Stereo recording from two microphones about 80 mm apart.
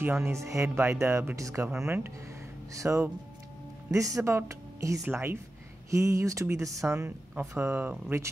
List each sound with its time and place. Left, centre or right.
0.0 s speech: right
2.7 s speech: right
5.0 s speech: right
7.1 s speech: right